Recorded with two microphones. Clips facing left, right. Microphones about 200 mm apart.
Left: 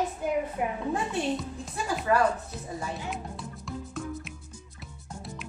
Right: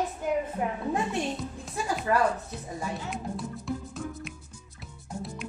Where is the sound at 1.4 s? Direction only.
Centre (ahead or behind).